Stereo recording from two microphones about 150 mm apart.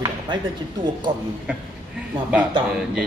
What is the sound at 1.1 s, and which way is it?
Speech, 30° right (ahead or behind).